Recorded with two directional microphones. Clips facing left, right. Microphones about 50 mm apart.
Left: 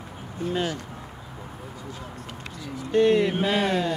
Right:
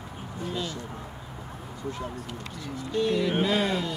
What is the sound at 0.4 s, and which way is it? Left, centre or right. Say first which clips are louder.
Speech: left 6 dB; left.